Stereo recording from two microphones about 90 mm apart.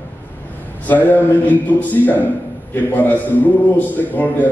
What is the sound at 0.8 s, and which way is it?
A man's voice, 20° left (ahead or behind).